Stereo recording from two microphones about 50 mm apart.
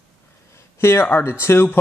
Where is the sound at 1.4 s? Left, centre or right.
Left.